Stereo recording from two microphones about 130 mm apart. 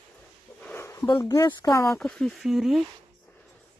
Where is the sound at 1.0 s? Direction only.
30° left (ahead or behind).